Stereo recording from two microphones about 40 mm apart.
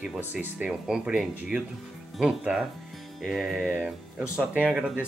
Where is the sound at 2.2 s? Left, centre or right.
Centre.